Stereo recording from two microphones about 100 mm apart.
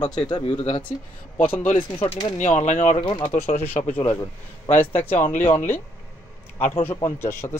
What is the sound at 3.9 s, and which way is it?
Speech, 20° left (ahead or behind).